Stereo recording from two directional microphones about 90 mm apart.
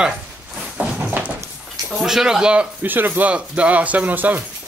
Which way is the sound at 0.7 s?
15° right (ahead or behind).